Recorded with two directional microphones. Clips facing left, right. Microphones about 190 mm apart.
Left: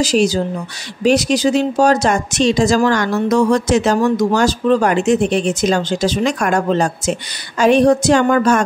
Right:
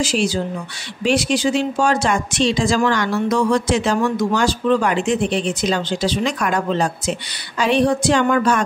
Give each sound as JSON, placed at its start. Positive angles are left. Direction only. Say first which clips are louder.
{"t": 0.0, "sound": "speech", "louder": "left 5 dB", "side_deg": 40}